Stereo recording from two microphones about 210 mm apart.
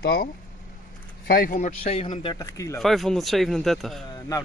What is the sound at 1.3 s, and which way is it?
Speech, 40° left (ahead or behind).